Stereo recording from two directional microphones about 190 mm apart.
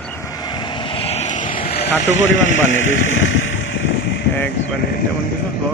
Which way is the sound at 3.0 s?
85° left.